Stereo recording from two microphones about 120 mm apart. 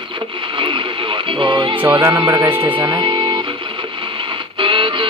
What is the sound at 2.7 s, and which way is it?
Speech, 40° right (ahead or behind).